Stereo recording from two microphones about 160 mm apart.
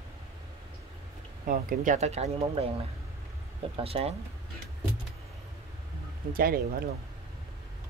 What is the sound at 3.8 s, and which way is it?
Speech, 40° right (ahead or behind).